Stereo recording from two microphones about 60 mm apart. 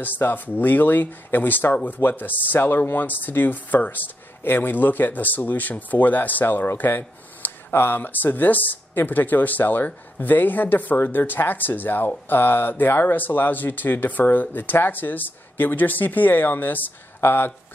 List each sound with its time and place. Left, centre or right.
0.0 s speech: left